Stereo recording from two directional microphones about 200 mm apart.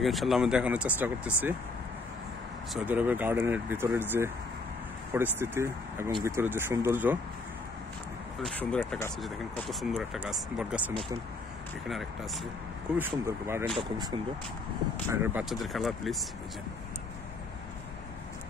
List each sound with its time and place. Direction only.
0.0 s speech: centre (ahead or behind)
2.7 s speech: 10° right (ahead or behind)
8.4 s speech: 5° left (ahead or behind)
12.9 s speech: 10° right (ahead or behind)
13.7 s speech: 25° right (ahead or behind)
15.0 s speech: 10° right (ahead or behind)
15.5 s speech: centre (ahead or behind)